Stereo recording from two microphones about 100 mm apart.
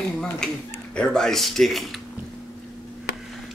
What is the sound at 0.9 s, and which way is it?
Speech, 5° left (ahead or behind).